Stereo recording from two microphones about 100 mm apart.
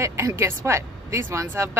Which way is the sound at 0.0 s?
30° right (ahead or behind).